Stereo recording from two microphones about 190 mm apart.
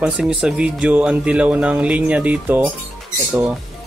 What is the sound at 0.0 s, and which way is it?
Speech, 5° right (ahead or behind).